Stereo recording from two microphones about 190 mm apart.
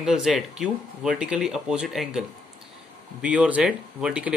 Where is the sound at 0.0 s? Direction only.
5° right (ahead or behind).